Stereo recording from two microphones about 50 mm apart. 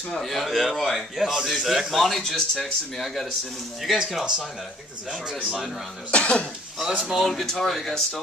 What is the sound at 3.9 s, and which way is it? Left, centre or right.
Speech, centre.